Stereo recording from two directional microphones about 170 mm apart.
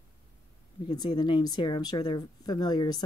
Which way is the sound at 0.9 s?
25° left (ahead or behind).